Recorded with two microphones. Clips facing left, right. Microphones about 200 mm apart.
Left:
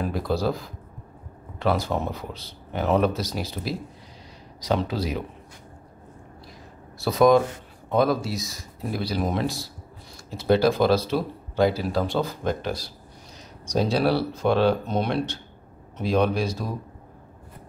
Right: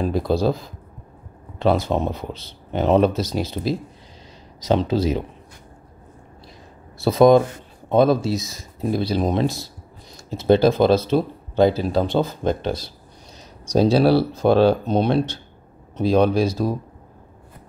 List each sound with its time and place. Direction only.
0.0 s speech: 25° right (ahead or behind)
1.6 s speech: 25° right (ahead or behind)
7.0 s speech: 25° right (ahead or behind)